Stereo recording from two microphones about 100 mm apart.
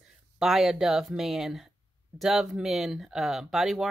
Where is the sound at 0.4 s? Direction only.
5° right (ahead or behind).